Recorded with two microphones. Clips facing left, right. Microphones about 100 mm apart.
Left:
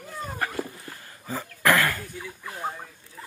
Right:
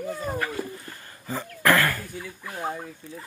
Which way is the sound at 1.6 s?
15° left (ahead or behind).